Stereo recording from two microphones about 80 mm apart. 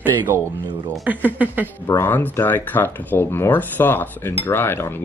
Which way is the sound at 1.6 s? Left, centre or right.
Left.